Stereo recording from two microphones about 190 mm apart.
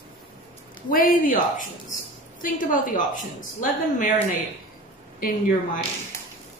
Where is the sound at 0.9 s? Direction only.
45° left (ahead or behind).